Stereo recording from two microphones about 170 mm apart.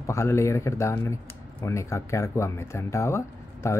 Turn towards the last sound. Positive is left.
turn(degrees=15)  # may be behind; listen again after turning